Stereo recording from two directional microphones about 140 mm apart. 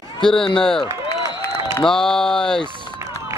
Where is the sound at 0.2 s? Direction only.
5° left (ahead or behind).